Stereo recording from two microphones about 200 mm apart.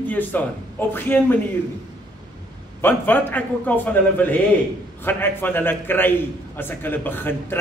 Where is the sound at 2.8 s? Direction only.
10° left (ahead or behind).